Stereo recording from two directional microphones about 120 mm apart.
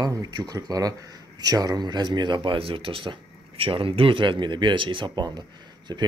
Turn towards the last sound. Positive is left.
turn(degrees=-35)  # may be behind; listen again after turning